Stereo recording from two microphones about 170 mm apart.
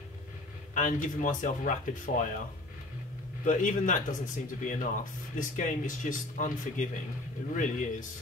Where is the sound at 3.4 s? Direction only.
50° left (ahead or behind).